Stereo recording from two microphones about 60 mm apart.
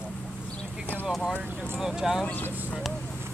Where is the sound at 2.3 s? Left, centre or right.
Left.